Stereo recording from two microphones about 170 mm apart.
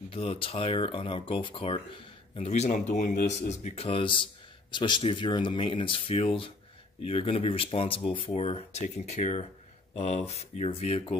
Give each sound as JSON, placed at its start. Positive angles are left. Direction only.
{"t": 0.1, "sound": "a man's voice", "side_deg": 35}